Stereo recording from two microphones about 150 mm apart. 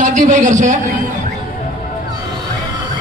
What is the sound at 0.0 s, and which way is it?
Speech, 55° right (ahead or behind).